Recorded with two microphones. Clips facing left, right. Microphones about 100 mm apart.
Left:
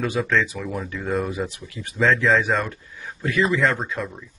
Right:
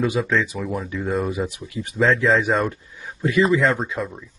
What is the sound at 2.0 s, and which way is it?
Speech, 5° right (ahead or behind).